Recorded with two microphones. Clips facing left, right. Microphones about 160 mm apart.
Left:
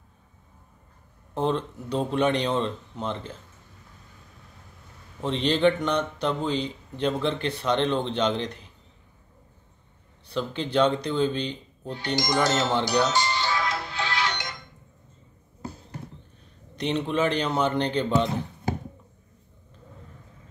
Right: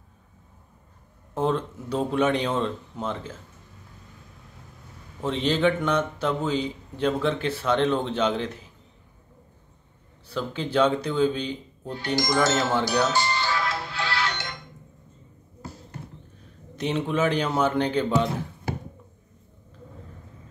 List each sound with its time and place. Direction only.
1.3 s speech: 5° right (ahead or behind)
5.2 s a man's voice: 5° right (ahead or behind)
10.2 s a man's voice: 5° right (ahead or behind)
13.0 s music: 20° left (ahead or behind)
16.7 s speech: 5° right (ahead or behind)